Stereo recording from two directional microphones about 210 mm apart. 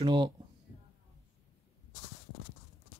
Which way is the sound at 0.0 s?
20° right (ahead or behind).